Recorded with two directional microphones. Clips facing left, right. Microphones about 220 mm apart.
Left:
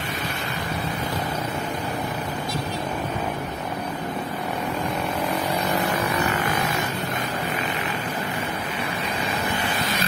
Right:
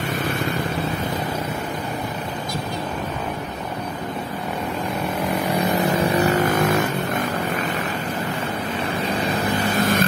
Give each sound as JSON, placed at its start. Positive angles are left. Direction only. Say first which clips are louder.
{"t": 5.9, "sound": "vehicle", "louder": "right 6 dB", "side_deg": -35}
{"t": 9.6, "sound": "vehicle", "louder": "right 7 dB", "side_deg": -45}